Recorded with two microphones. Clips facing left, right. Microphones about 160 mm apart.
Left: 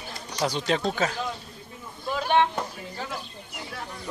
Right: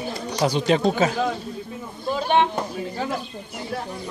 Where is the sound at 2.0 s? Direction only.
25° right (ahead or behind).